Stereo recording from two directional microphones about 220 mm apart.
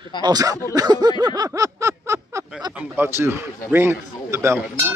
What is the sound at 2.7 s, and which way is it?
A man's voice, 10° right (ahead or behind).